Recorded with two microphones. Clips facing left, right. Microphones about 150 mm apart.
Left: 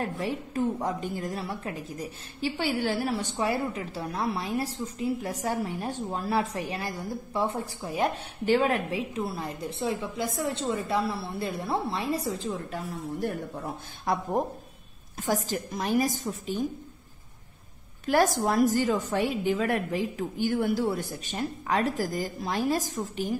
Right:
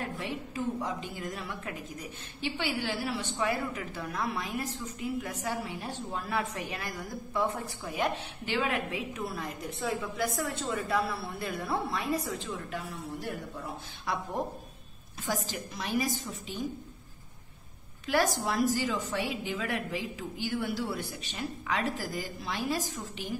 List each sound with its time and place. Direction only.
0.0 s a woman's voice: 40° left (ahead or behind)
1.2 s a woman's voice: 35° left (ahead or behind)
3.3 s a woman's voice: 30° left (ahead or behind)
14.1 s a woman's voice: 45° left (ahead or behind)
15.2 s a woman's voice: 45° left (ahead or behind)
18.0 s a woman's voice: 45° left (ahead or behind)